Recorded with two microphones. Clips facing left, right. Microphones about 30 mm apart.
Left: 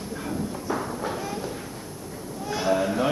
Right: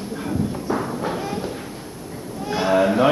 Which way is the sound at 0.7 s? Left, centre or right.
Right.